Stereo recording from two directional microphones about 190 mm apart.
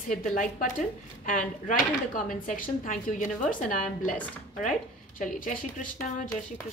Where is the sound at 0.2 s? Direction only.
40° left (ahead or behind).